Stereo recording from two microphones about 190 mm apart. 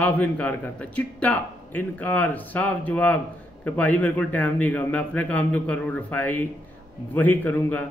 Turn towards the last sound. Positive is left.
turn(degrees=10)  # may be behind; listen again after turning